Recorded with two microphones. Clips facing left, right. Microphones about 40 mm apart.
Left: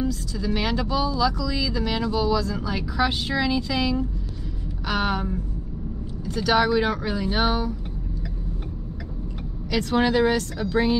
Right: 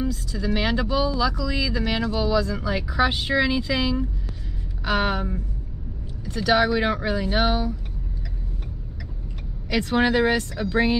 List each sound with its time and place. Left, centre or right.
0.0 s speech: centre
9.7 s speech: centre